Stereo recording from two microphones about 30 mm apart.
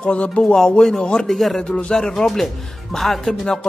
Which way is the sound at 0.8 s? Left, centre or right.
Left.